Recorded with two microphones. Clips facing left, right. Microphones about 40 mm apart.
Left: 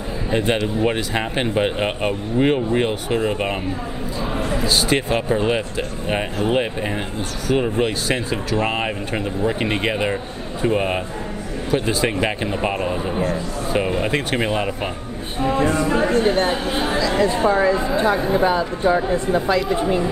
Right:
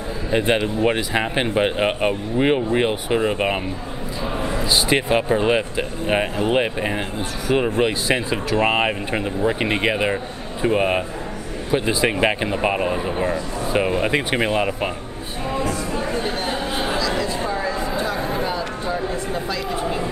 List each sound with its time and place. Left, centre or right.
0.5 s speech: centre
4.6 s speech: centre
9.1 s speech: centre
15.6 s speech: left
15.9 s speech: left
16.3 s speech: left
18.2 s speech: left